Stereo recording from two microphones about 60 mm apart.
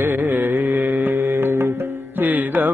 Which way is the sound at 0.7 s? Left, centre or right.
Right.